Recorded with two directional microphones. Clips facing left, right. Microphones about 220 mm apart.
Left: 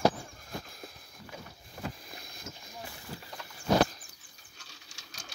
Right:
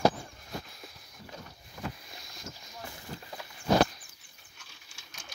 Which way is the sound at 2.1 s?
55° left (ahead or behind).